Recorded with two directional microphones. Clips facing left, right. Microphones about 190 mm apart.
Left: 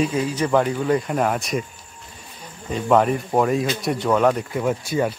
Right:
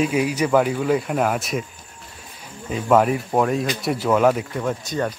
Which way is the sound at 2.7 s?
5° right (ahead or behind).